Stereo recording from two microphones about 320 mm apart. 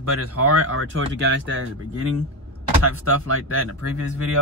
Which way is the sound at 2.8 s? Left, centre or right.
Right.